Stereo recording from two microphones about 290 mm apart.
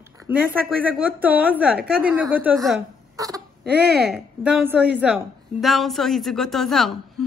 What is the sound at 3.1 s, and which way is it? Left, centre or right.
A woman's voice, centre.